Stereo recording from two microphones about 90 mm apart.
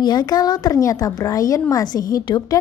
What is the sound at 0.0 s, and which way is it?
A woman's voice, 50° left (ahead or behind).